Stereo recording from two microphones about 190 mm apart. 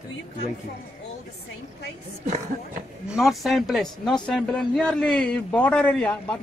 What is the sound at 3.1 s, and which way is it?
A man's voice, centre (ahead or behind).